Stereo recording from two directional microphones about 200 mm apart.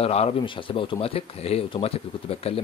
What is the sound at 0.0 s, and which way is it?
Speech, 30° left (ahead or behind).